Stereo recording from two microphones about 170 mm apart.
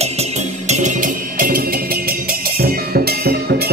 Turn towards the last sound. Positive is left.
turn(degrees=-60)  # may be behind; listen again after turning